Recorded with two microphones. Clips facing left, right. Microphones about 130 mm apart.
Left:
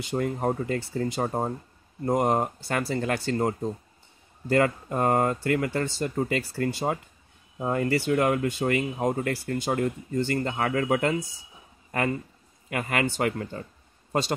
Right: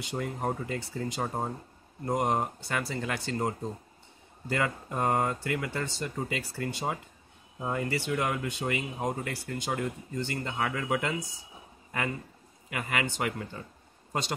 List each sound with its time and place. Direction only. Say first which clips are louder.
0.1 s speech: left 6 dB; 45° left (ahead or behind)